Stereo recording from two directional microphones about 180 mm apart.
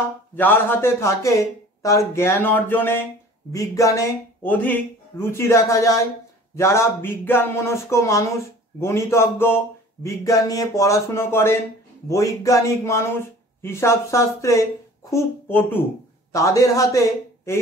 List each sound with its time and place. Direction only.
0.4 s speech: 10° left (ahead or behind)